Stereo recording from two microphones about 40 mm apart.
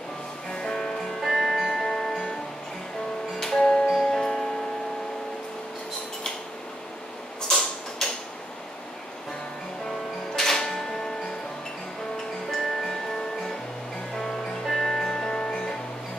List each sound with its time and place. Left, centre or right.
0.5 s music: centre
1.2 s music: centre
3.5 s music: centre
7.4 s a sound: centre
9.8 s music: centre
14.7 s music: centre
15.0 s music: centre